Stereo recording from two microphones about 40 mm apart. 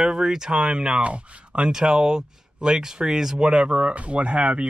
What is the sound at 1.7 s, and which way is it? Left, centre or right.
Speech, centre.